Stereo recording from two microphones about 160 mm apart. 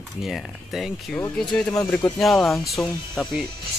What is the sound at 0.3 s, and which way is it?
Speech, centre (ahead or behind).